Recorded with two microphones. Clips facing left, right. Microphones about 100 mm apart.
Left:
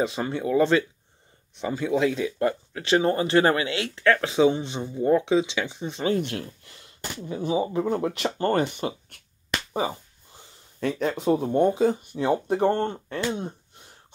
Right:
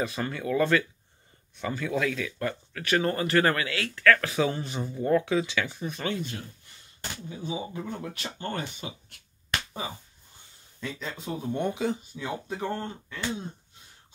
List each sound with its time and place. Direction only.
0.0 s speech: 25° left (ahead or behind)
6.2 s speech: 85° left; by 8.9 s 65° left (ahead or behind)
9.8 s a sound: 70° left (ahead or behind)
11.5 s speech: 35° left (ahead or behind)
12.0 s speech: 65° left (ahead or behind)